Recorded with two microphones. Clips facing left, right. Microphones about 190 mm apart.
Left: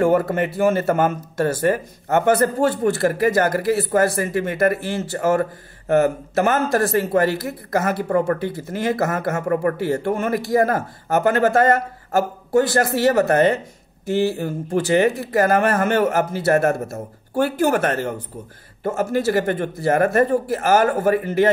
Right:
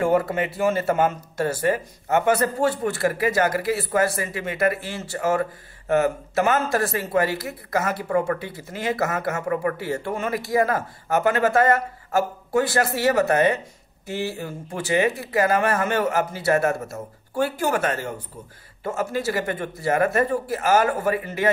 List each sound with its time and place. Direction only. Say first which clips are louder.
0.0 s speech: left 3 dB; 50° left (ahead or behind)